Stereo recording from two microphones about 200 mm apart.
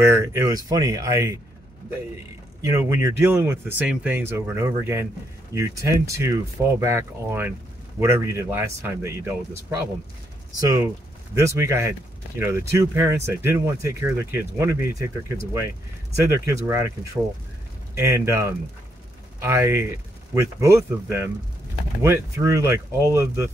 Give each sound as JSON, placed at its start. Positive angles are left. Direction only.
{"t": 0.0, "sound": "speech", "side_deg": -15}
{"t": 2.6, "sound": "speech", "side_deg": -15}
{"t": 10.6, "sound": "speech", "side_deg": -15}